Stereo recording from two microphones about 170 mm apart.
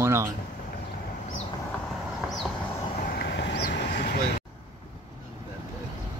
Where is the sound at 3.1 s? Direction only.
80° left.